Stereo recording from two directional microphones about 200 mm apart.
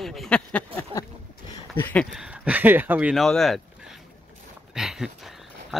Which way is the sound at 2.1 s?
5° right (ahead or behind).